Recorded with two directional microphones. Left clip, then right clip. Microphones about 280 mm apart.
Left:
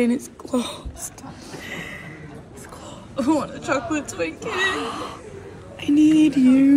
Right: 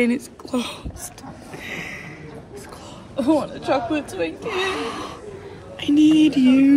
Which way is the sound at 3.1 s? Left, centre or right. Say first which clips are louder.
Right 2 dB; left.